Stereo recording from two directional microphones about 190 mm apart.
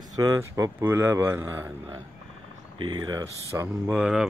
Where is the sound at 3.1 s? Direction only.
15° right (ahead or behind).